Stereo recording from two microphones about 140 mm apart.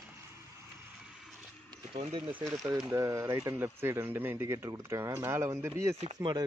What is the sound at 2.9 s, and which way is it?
Speech, 20° right (ahead or behind).